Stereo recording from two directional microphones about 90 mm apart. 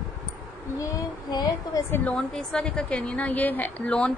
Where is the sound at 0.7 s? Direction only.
40° left (ahead or behind).